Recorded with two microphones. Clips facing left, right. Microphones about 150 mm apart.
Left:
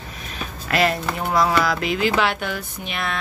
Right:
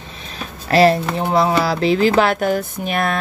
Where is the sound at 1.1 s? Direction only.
25° right (ahead or behind); by 3.2 s 45° right (ahead or behind).